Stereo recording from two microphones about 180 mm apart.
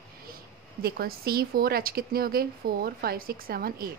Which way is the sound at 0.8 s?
60° right (ahead or behind).